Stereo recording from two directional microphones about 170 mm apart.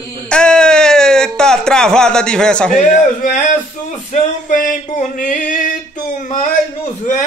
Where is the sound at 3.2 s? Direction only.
50° left (ahead or behind).